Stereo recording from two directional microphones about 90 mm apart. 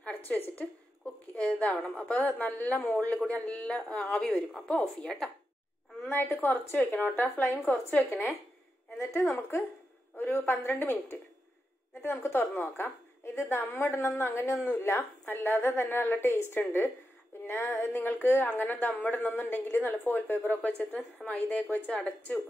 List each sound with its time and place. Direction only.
0.0 s a sound: 20° left (ahead or behind)
1.3 s a woman's voice: 15° left (ahead or behind)
6.0 s a woman's voice: 20° left (ahead or behind)
10.1 s a woman's voice: 25° left (ahead or behind)